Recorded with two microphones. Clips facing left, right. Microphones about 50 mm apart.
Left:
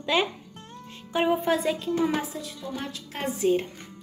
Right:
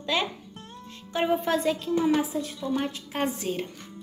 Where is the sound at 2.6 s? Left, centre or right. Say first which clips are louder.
Right 7 dB; right.